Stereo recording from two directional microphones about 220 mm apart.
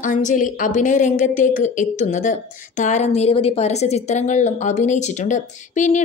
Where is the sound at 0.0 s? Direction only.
35° left (ahead or behind).